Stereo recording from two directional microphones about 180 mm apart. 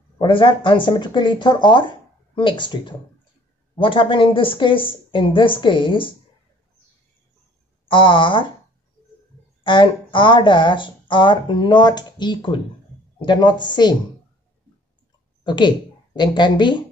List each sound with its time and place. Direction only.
0.2 s speech: 30° left (ahead or behind)
7.9 s speech: 25° left (ahead or behind)
9.6 s speech: 25° left (ahead or behind)
15.4 s speech: 25° left (ahead or behind)